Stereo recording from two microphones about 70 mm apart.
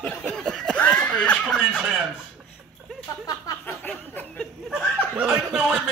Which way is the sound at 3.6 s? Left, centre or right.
Left.